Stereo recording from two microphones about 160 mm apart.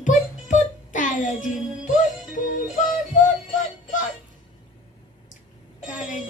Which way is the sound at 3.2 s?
55° left (ahead or behind).